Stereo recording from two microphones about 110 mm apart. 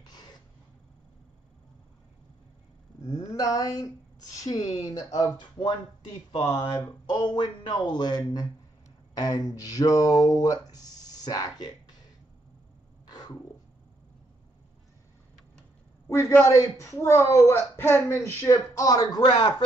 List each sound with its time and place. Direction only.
0.0 s a sound: 40° left (ahead or behind)
3.0 s speech: 30° left (ahead or behind)
13.1 s cat: 40° left (ahead or behind)
16.1 s a woman's voice: 25° left (ahead or behind)